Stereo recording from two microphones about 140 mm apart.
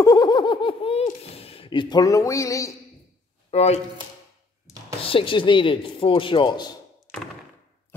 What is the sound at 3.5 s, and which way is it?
Speech, 50° left (ahead or behind).